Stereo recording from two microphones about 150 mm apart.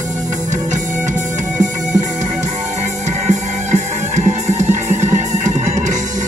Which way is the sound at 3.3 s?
50° right (ahead or behind).